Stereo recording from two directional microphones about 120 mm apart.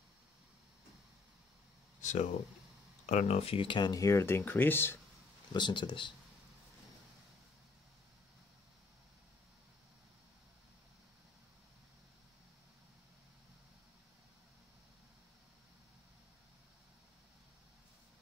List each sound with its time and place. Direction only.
2.0 s a sound: 90° left
3.1 s speech: 70° left (ahead or behind); by 4.9 s 15° left (ahead or behind)
5.5 s speech: 40° left (ahead or behind)